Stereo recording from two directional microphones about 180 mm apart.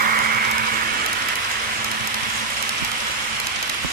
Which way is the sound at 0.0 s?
55° right (ahead or behind).